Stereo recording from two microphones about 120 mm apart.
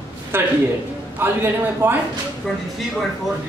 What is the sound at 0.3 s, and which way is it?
A man's voice, 20° right (ahead or behind).